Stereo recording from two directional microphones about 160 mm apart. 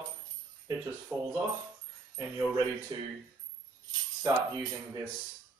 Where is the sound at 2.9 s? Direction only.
25° right (ahead or behind).